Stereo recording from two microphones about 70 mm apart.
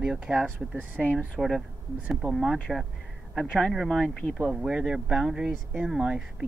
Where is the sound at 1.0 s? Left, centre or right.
Left.